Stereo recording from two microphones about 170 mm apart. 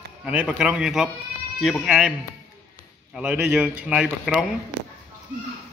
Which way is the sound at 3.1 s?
5° right (ahead or behind).